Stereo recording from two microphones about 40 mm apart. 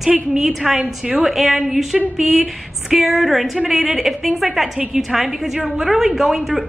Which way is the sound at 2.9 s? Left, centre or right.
Centre.